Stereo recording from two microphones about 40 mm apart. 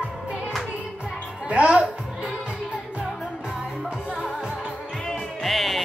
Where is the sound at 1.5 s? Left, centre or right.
Right.